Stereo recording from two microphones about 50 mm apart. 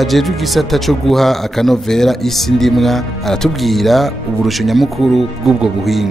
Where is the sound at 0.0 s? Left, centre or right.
Centre.